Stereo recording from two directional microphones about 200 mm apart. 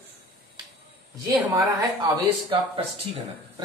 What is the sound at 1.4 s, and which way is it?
Speech, 15° right (ahead or behind).